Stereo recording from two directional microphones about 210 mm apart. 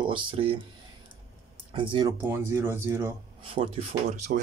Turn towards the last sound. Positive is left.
turn(degrees=-30)  # may be behind; listen again after turning